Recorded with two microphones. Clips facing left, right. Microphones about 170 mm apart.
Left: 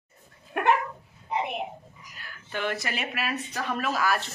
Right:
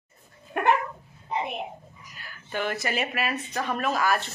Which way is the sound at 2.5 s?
Centre (ahead or behind).